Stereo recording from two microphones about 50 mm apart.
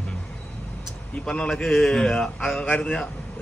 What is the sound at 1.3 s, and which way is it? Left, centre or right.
Speech, centre.